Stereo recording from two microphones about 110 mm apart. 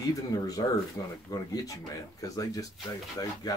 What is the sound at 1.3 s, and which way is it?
Speech, 30° left (ahead or behind).